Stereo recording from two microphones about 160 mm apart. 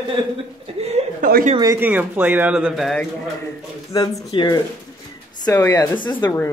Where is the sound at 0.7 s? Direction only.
40° right (ahead or behind).